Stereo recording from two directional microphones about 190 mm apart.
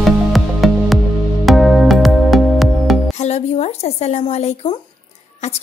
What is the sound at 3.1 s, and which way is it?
Speech, 35° left (ahead or behind).